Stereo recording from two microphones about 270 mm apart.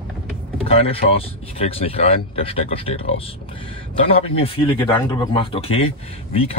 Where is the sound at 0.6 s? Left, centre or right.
Left.